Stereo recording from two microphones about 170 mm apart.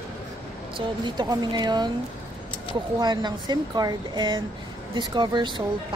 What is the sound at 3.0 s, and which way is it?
Speech, 25° right (ahead or behind).